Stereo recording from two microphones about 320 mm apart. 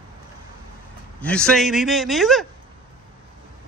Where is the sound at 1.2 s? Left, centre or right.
Centre.